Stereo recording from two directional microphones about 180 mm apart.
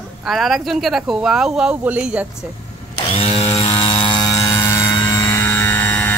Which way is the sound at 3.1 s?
30° left (ahead or behind).